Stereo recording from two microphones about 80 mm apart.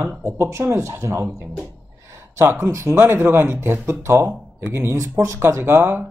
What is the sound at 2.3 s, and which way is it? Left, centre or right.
Speech, right.